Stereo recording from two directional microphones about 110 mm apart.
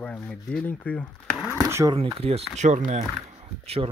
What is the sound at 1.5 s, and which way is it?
Speech, 30° right (ahead or behind).